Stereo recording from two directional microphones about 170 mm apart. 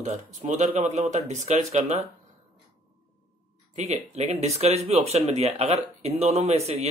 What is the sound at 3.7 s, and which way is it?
Speech, 40° right (ahead or behind).